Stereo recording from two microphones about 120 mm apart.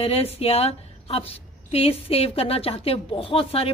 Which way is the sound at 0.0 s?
55° left (ahead or behind).